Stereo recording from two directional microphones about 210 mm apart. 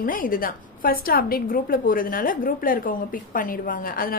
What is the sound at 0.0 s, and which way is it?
A woman's voice, 40° left (ahead or behind).